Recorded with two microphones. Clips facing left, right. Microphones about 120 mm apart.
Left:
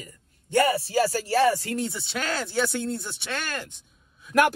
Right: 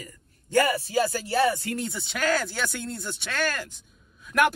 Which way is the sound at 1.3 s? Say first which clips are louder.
Left 2 dB; 35° left (ahead or behind).